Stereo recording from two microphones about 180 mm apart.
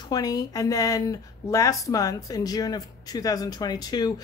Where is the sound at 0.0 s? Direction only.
20° left (ahead or behind).